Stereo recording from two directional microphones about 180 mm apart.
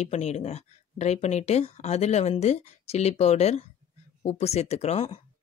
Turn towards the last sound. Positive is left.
turn(degrees=35)  # may be behind; listen again after turning